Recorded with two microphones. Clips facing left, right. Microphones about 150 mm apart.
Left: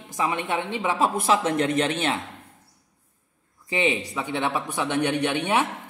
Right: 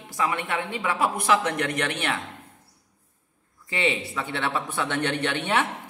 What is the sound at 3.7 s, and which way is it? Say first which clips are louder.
Speech: left 2 dB; 15° left (ahead or behind).